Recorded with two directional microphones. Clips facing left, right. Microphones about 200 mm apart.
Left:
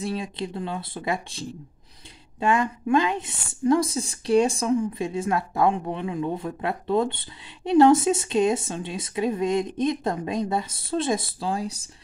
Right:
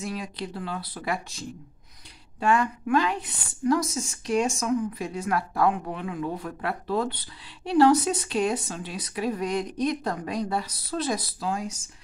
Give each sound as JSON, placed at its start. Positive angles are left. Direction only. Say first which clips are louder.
{"t": 0.0, "sound": "a woman's voice", "louder": "left 4 dB", "side_deg": 25}
{"t": 2.4, "sound": "a woman's voice", "louder": "left 1 dB", "side_deg": 20}